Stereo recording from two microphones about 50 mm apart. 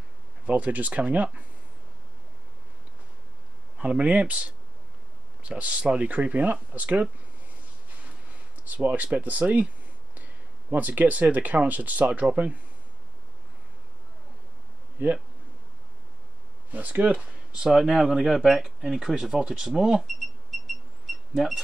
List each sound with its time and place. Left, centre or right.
0.5 s speech: right
3.7 s speech: right
8.6 s speech: right
10.7 s speech: right
16.7 s speech: right
17.6 s speech: centre